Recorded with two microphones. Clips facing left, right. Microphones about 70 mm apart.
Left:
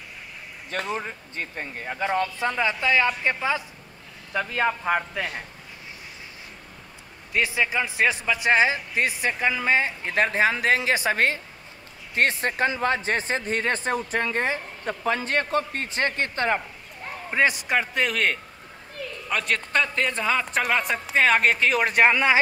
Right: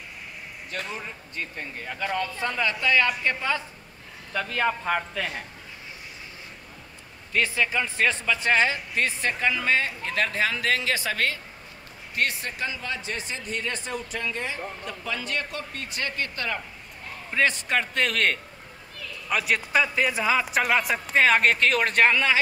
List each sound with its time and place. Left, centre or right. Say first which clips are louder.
0.7 s a man's voice: left 5 dB; left; by 5.4 s centre
7.3 s speech: left 1 dB; centre; by 16.6 s left
17.5 s a man's voice: left 2 dB; centre